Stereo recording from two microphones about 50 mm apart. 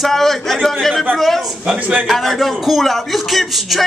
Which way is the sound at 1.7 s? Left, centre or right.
Right.